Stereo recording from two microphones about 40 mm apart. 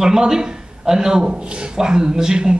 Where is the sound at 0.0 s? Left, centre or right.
Centre.